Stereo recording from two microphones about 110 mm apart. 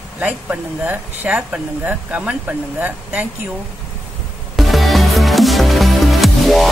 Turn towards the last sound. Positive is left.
turn(degrees=0)  # may be behind; listen again after turning